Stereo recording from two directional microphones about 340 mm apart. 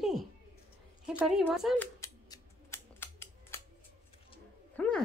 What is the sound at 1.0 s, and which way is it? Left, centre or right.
Scissors, centre.